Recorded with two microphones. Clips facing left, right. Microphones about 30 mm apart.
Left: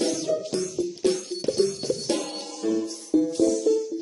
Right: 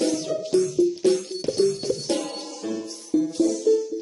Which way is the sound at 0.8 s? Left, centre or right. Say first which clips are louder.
Right 5 dB; centre.